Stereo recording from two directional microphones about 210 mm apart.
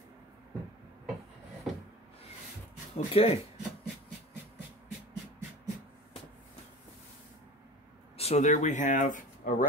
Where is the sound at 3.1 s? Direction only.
30° left (ahead or behind).